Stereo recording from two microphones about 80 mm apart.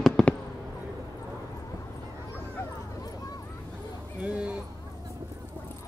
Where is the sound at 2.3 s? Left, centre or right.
Left.